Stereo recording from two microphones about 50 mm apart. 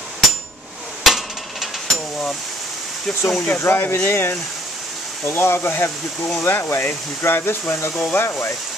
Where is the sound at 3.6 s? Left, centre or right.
Left.